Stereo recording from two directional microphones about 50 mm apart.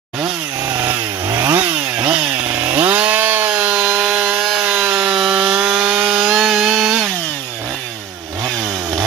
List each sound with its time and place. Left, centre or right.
0.7 s chainsaw: right
1.6 s chainsaw: right
3.7 s wood: centre
4.4 s wood: centre
4.6 s sawing: right
4.9 s wood: centre
6.3 s sawing: centre